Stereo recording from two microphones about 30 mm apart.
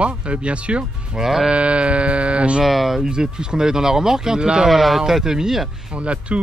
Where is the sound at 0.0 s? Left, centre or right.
Right.